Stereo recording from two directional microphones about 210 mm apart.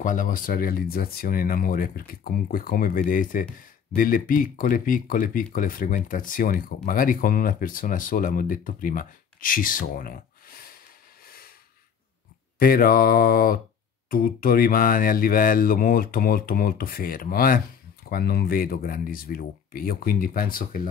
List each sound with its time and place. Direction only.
0.0 s mantra: 40° left (ahead or behind)
3.9 s speech: 40° left (ahead or behind)
11.2 s snort: 45° left (ahead or behind)
12.5 s mantra: 45° left (ahead or behind)